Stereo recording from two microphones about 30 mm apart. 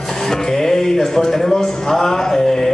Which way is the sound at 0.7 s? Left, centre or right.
Centre.